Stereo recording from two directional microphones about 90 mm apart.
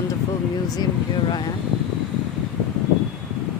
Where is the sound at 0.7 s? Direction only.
50° left (ahead or behind).